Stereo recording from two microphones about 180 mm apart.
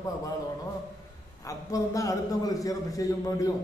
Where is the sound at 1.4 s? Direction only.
20° left (ahead or behind).